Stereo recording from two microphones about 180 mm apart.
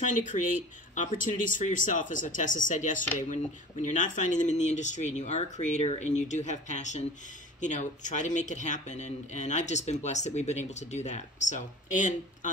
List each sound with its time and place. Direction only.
0.0 s speech: 45° left (ahead or behind)